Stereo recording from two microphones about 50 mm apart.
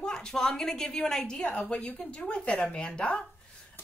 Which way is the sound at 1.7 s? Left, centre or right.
Left.